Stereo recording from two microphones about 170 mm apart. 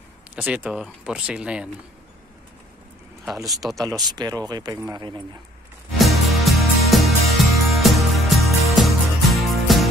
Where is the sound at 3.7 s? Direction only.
25° right (ahead or behind).